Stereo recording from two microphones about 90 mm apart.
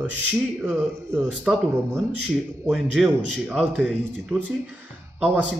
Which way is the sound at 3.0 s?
5° right (ahead or behind).